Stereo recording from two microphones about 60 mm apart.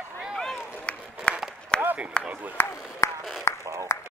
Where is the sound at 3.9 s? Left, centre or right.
Left.